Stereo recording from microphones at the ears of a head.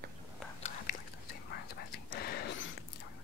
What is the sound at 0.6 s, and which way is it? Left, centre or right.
Whispering, left.